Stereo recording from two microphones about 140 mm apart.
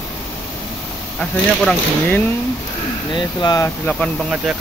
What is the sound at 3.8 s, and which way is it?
Speech, 5° left (ahead or behind).